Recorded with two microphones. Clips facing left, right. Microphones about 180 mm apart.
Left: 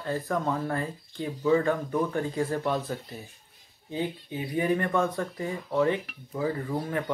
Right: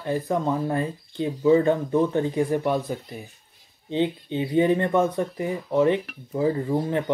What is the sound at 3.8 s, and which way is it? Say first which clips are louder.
A man's voice: right 7 dB; 25° right (ahead or behind).